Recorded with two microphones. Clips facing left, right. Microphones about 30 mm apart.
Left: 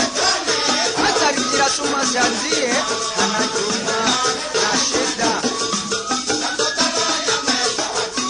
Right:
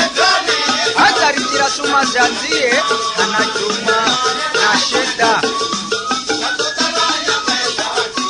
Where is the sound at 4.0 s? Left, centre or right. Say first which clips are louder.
Right 3 dB; centre.